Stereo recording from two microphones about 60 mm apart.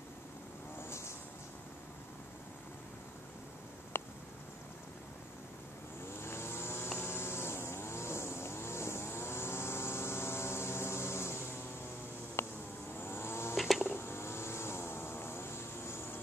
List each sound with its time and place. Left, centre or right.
0.8 s vehicle: left
3.9 s a sound: left
6.2 s vehicle: left
12.4 s a sound: left
12.9 s vehicle: left
13.6 s insect: centre
13.8 s vehicle: left